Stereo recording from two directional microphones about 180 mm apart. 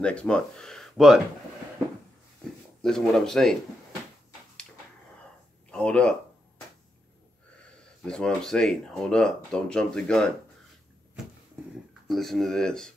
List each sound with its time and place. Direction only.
0.0 s speech: 5° left (ahead or behind)
2.8 s speech: 5° left (ahead or behind)
5.7 s speech: 5° left (ahead or behind)
8.0 s speech: 5° left (ahead or behind)
12.1 s speech: centre (ahead or behind)